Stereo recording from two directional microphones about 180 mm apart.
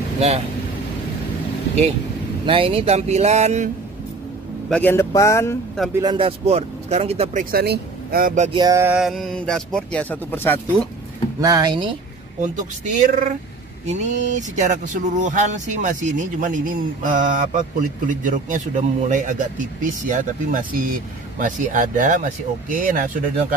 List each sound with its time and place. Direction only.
2.4 s speech: 30° right (ahead or behind)
4.6 s speech: 10° left (ahead or behind)
5.9 s speech: 25° right (ahead or behind)
7.5 s speech: 60° right (ahead or behind)
8.5 s speech: 20° right (ahead or behind)
8.9 s speech: centre (ahead or behind)
11.4 s speech: 20° right (ahead or behind)
12.4 s speech: 45° right (ahead or behind)